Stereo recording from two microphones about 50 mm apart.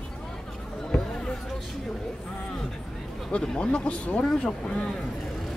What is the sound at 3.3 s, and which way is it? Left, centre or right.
Speech, left.